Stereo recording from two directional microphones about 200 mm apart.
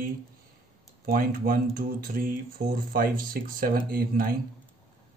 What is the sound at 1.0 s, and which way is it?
Speech, 45° right (ahead or behind).